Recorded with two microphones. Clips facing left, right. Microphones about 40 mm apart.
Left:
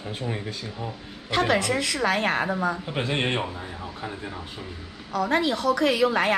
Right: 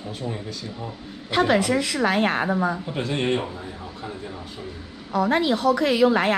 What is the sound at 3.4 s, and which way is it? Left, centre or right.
Speech, centre.